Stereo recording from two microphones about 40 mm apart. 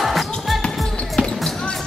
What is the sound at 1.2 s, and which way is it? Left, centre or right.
Basketball bounce, left.